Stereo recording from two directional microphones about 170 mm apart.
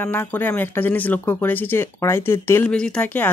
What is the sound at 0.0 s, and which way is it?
Speech, 10° left (ahead or behind).